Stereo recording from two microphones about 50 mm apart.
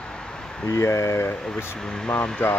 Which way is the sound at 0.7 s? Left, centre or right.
Left.